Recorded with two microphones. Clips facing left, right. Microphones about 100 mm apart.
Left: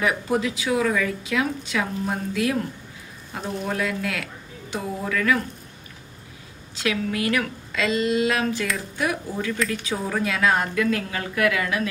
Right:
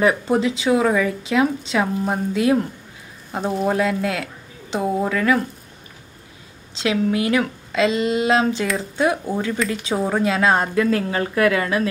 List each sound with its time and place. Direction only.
0.0 s a woman's voice: 30° right (ahead or behind)
3.6 s speech: 30° right (ahead or behind)
6.7 s a woman's voice: 25° right (ahead or behind)